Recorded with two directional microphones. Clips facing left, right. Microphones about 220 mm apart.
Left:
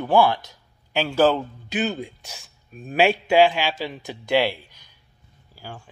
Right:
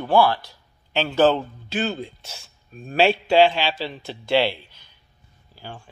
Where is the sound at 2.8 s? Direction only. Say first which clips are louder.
Even; 15° left (ahead or behind).